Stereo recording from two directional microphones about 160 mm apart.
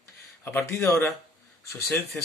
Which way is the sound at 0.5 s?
15° left (ahead or behind).